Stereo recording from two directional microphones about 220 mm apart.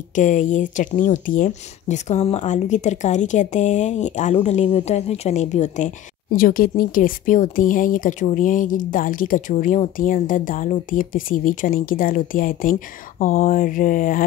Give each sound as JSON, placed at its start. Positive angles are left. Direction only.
{"t": 0.1, "sound": "speech", "side_deg": 35}